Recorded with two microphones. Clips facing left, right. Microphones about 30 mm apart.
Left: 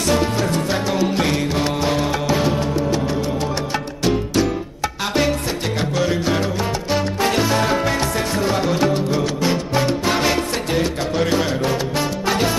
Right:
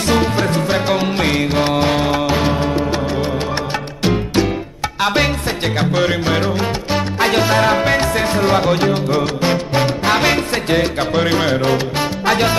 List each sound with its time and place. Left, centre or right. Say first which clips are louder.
0.1 s music: right 3 dB; right
4.0 s music: right 2 dB; right
5.8 s music: right 4 dB; right
7.2 s music: right 6 dB; right